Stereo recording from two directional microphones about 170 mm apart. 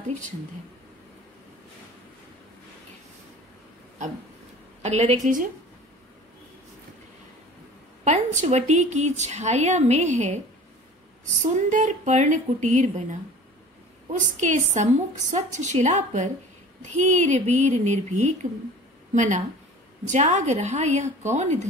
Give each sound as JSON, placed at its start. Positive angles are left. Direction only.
{"t": 4.8, "sound": "a woman's voice", "side_deg": -40}
{"t": 8.0, "sound": "a woman's voice", "side_deg": -40}
{"t": 11.5, "sound": "a woman's voice", "side_deg": -45}
{"t": 14.1, "sound": "a woman's voice", "side_deg": -45}